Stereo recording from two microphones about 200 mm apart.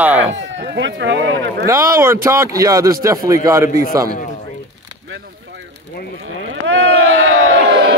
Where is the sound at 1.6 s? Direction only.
15° right (ahead or behind).